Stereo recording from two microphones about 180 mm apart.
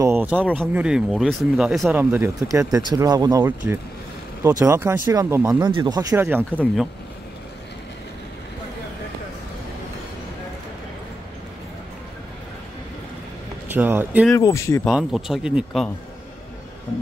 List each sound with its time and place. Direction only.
0.0 s a sound: 10° right (ahead or behind)
0.7 s speech: 5° right (ahead or behind)
6.5 s speech: 5° left (ahead or behind)
13.7 s speech: 10° right (ahead or behind)
14.3 s speech: 15° left (ahead or behind)
14.9 s speech: centre (ahead or behind)